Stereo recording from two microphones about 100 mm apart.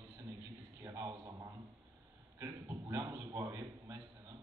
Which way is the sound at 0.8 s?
35° right (ahead or behind).